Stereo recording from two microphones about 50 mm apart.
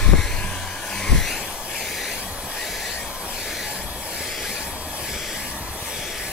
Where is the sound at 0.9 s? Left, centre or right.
Centre.